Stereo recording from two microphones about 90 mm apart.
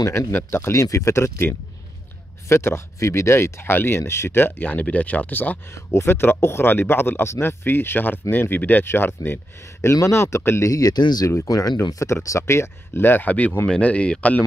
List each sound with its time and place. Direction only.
0.3 s speech: 25° left (ahead or behind)